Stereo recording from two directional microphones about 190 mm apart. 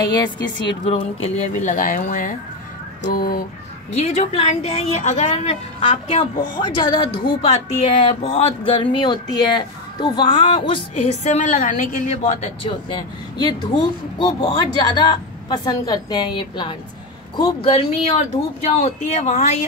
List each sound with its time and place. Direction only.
0.7 s speech: 30° left (ahead or behind); by 3.4 s 50° left (ahead or behind)
3.9 s a woman's voice: 35° left (ahead or behind)
11.2 s a woman's voice: 40° left (ahead or behind)